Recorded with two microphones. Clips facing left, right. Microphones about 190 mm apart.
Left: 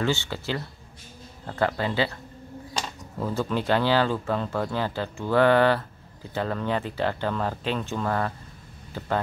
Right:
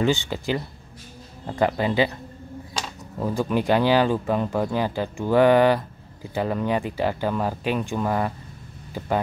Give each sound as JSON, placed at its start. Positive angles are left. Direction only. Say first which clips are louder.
{"t": 0.0, "sound": "speech", "louder": "right 4 dB", "side_deg": -15}
{"t": 3.2, "sound": "speech", "louder": "right 3 dB", "side_deg": -15}